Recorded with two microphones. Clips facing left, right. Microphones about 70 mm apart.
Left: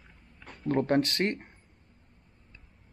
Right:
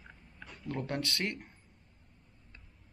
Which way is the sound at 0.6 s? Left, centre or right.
Left.